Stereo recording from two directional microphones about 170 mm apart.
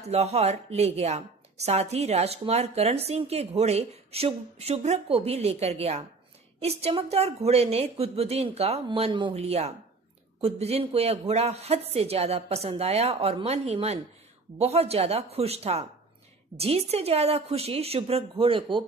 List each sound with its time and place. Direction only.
0.1 s a woman's voice: 40° right (ahead or behind)